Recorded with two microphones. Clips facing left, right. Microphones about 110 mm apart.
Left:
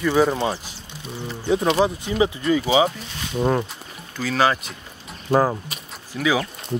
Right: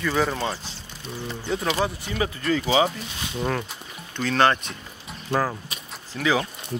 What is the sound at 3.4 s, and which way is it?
Speech, 20° left (ahead or behind).